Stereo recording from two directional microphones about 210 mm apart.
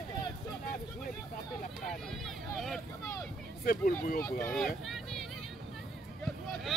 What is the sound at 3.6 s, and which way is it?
Speech, 45° left (ahead or behind).